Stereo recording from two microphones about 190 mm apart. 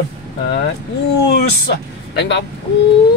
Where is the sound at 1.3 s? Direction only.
60° left (ahead or behind).